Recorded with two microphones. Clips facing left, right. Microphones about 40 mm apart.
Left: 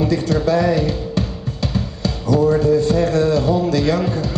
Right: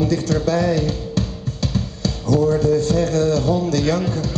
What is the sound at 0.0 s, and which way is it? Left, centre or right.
Speech, centre.